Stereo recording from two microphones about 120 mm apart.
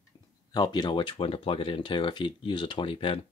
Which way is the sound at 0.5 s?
35° left (ahead or behind).